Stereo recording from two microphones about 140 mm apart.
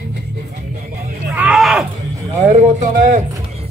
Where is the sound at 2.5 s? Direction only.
60° right (ahead or behind).